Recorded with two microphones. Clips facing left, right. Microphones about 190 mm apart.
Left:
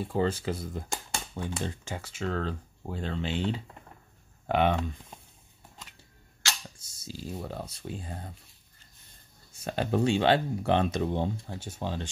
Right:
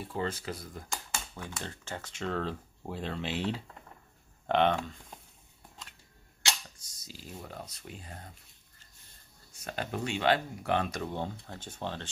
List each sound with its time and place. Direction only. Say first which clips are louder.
0.1 s speech: left 6 dB; 30° left (ahead or behind); by 4.7 s 5° left (ahead or behind)
6.8 s a sound: left 9 dB; 25° left (ahead or behind)
7.4 s speech: left 7 dB; 30° left (ahead or behind)
9.5 s speech: left 7 dB; 30° left (ahead or behind)
11.4 s speech: left 3 dB; 10° left (ahead or behind)